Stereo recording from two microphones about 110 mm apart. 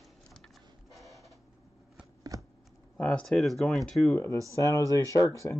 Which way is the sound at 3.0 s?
15° left (ahead or behind).